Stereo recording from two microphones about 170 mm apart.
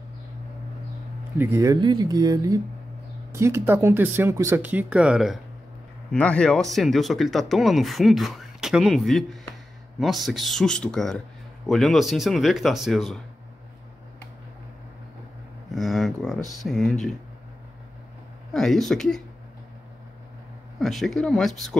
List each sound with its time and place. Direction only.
1.4 s a man's voice: 15° right (ahead or behind); by 13.2 s centre (ahead or behind)
15.7 s a man's voice: centre (ahead or behind)
18.5 s a man's voice: centre (ahead or behind)
20.8 s a man's voice: centre (ahead or behind)